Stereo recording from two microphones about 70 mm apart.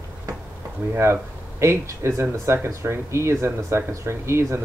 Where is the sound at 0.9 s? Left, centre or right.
Right.